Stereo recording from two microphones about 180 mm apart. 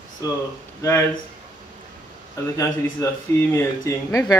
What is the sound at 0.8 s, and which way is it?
Speech, 15° left (ahead or behind).